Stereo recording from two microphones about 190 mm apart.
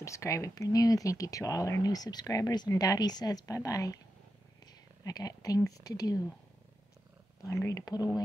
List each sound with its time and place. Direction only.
0.0 s speech: 15° left (ahead or behind)
5.0 s speech: 20° left (ahead or behind)
7.4 s speech: 15° left (ahead or behind)